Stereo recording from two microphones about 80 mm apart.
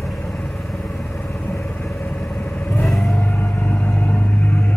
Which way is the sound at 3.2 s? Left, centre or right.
Centre.